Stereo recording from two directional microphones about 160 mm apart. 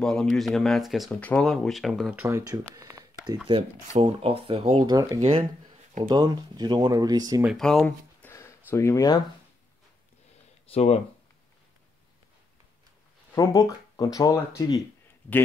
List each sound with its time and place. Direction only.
0.0 s speech: 5° left (ahead or behind)
2.1 s speech: 15° right (ahead or behind)
4.0 s speech: 35° right (ahead or behind)
7.4 s speech: centre (ahead or behind)
8.3 s a sound: 15° left (ahead or behind)
10.7 s speech: 40° left (ahead or behind)
13.3 s speech: 20° left (ahead or behind)